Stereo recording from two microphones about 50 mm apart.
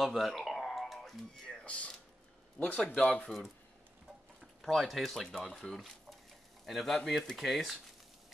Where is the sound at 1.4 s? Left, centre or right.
Left.